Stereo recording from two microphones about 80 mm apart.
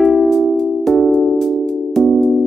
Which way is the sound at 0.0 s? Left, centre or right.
Centre.